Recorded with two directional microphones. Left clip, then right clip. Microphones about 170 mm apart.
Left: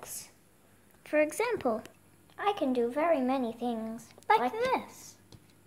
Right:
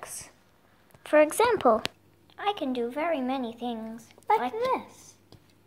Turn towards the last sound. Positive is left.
turn(degrees=30)  # may be behind; listen again after turning